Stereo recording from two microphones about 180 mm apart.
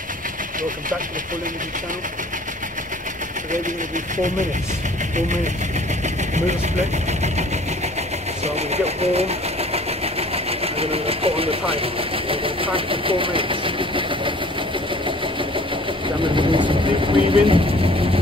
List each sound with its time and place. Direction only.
5.1 s speech: 45° right (ahead or behind)
6.0 s vehicle: 40° right (ahead or behind)
8.5 s speech: 35° right (ahead or behind)
16.3 s speech: 25° right (ahead or behind)